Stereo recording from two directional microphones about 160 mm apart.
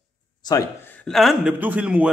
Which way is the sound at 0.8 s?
5° left (ahead or behind).